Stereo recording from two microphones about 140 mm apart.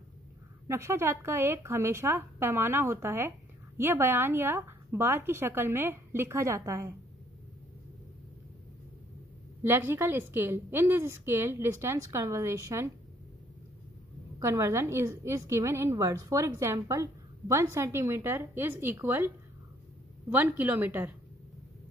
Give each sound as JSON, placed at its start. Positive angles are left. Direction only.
{"t": 0.7, "sound": "a woman's voice", "side_deg": -20}
{"t": 9.6, "sound": "a woman's voice", "side_deg": -15}
{"t": 14.4, "sound": "a woman's voice", "side_deg": -20}